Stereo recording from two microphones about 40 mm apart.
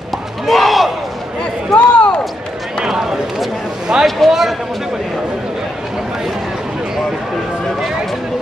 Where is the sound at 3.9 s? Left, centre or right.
Right.